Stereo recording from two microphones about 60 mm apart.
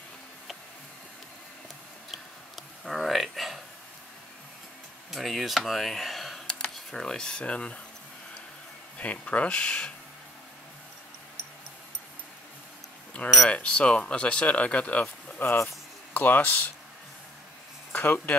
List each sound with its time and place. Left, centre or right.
2.8 s a sound: centre
5.1 s speech: centre
6.4 s speech: centre
8.9 s speech: left
13.5 s speech: centre
17.9 s speech: left